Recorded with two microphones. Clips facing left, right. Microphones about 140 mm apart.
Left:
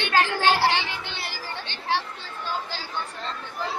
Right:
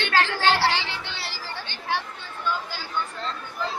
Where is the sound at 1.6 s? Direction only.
25° left (ahead or behind).